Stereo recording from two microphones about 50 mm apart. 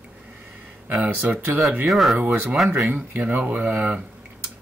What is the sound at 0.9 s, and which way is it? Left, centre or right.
Speech, right.